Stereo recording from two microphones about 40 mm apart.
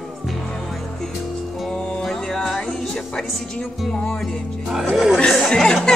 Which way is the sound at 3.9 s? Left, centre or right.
Centre.